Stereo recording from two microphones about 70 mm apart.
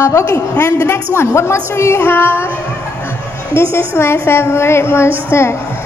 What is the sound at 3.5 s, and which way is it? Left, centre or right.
A child's voice, left.